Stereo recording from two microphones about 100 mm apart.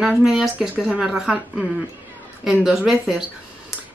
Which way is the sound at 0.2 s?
5° right (ahead or behind).